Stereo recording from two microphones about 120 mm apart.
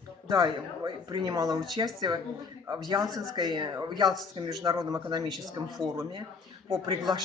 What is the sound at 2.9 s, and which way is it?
Speech, 35° right (ahead or behind).